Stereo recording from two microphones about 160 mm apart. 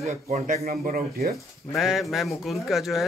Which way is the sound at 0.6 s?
70° right (ahead or behind).